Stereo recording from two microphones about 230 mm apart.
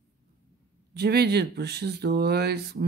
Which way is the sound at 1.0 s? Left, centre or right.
Right.